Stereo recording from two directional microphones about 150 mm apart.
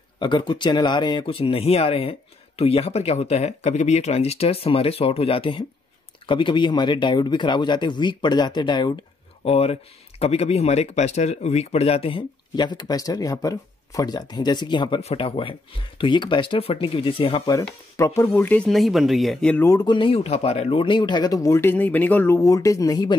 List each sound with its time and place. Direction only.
0.2 s speech: 30° left (ahead or behind)
9.4 s speech: 40° left (ahead or behind)
17.5 s speech: 20° left (ahead or behind)
18.7 s speech: centre (ahead or behind)
19.6 s speech: 25° left (ahead or behind)